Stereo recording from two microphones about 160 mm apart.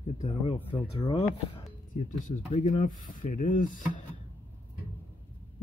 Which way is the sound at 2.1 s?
50° left (ahead or behind).